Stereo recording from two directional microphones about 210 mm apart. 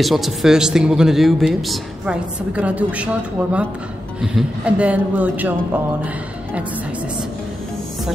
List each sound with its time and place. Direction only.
0.0 s speech: centre (ahead or behind)